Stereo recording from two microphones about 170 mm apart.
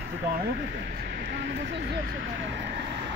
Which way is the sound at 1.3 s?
90° right.